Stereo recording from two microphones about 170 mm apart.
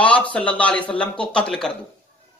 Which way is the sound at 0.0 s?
10° left (ahead or behind).